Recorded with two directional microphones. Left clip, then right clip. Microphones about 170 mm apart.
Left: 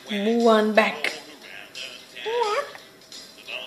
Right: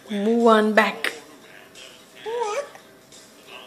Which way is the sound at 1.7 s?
55° left (ahead or behind).